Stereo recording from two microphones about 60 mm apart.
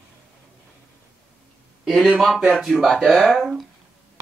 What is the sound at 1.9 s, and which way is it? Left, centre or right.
Speech, centre.